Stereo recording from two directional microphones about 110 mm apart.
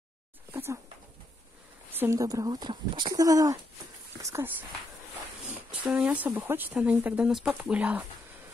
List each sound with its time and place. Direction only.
0.5 s a sound: 20° right (ahead or behind)
2.0 s speech: 30° right (ahead or behind)
5.5 s speech: 10° right (ahead or behind)